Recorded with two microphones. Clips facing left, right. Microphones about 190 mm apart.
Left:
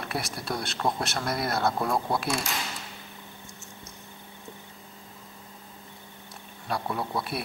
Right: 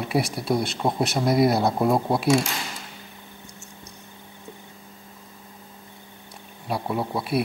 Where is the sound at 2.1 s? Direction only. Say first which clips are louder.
Right 8 dB; centre (ahead or behind).